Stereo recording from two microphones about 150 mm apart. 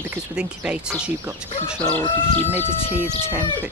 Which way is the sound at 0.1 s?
5° right (ahead or behind).